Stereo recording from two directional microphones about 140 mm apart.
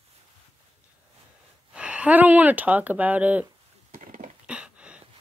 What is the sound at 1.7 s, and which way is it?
Speech, 10° right (ahead or behind).